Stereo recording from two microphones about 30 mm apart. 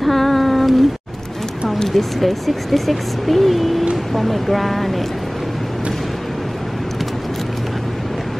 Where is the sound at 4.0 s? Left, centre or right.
Centre.